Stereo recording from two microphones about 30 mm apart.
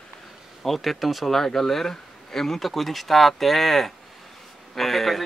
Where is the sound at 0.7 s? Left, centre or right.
Centre.